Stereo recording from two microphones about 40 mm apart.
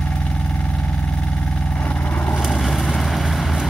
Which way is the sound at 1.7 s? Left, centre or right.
Left.